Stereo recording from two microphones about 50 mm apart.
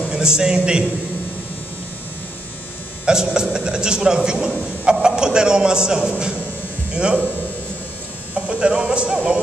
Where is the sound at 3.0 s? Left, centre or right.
Centre.